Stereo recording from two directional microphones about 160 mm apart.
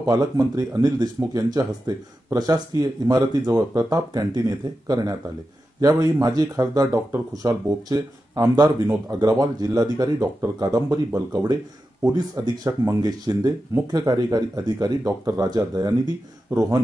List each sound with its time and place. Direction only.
0.0 s speech: 20° right (ahead or behind)